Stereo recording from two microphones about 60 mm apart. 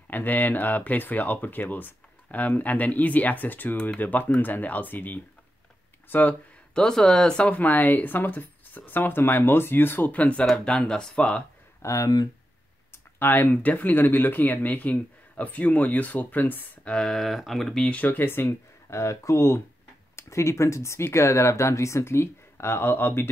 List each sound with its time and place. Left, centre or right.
0.1 s speech: left
6.7 s speech: centre
7.5 s speech: left
10.1 s speech: left
10.4 s speech: centre
11.8 s speech: left
12.9 s speech: left
17.0 s speech: centre
17.8 s speech: left